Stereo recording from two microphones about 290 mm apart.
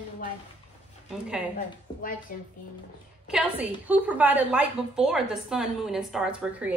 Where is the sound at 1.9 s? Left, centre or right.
Centre.